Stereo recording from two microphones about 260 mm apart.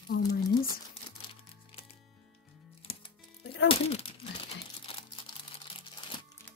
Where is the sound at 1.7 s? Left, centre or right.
Left.